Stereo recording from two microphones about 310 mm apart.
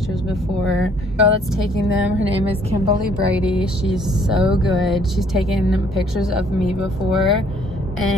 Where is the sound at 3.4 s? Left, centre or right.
Centre.